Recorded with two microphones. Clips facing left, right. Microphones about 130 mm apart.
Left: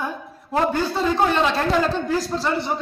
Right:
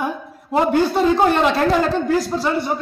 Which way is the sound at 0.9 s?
15° right (ahead or behind).